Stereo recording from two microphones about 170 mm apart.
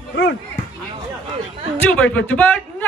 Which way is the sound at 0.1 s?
80° left.